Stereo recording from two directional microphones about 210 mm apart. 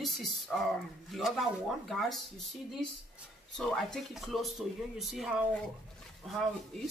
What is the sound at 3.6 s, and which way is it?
Speech, centre (ahead or behind).